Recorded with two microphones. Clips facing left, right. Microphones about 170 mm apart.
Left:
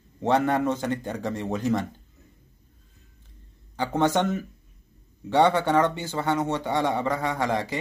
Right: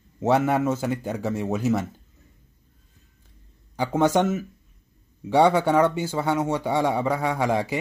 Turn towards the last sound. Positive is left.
turn(degrees=-10)  # may be behind; listen again after turning